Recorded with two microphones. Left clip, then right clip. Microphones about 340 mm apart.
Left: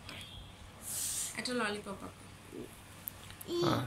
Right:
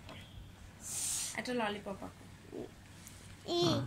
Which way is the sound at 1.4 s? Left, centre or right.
Right.